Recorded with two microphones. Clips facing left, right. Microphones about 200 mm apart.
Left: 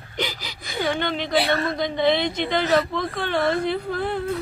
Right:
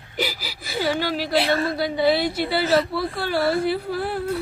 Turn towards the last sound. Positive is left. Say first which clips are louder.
# even
turn(degrees=-5)  # may be behind; listen again after turning